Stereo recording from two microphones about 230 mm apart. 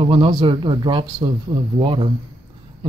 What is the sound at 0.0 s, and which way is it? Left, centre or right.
Speech, right.